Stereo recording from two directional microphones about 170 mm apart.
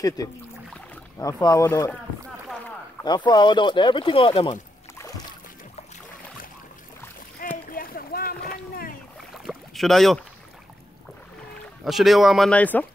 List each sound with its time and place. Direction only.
1.2 s speech: 20° left (ahead or behind)
3.3 s speech: 25° left (ahead or behind)
4.9 s boat: 20° left (ahead or behind)
7.4 s a sound: 55° left (ahead or behind)
9.3 s rowboat: centre (ahead or behind)
11.8 s speech: centre (ahead or behind)